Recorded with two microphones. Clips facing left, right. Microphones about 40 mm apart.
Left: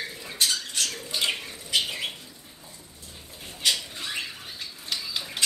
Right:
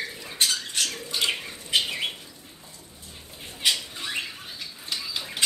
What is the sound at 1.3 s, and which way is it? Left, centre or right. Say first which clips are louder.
Bird: right 2 dB; centre.